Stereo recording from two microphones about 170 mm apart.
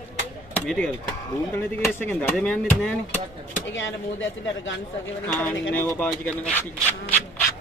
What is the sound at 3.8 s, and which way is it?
Speech, 90° left.